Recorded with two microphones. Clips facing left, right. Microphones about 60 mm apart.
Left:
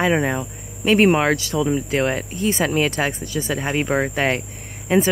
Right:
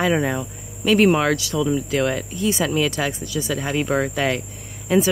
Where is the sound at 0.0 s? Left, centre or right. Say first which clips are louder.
Left 1 dB; left.